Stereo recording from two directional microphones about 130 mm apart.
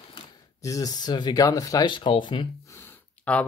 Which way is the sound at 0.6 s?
25° left (ahead or behind).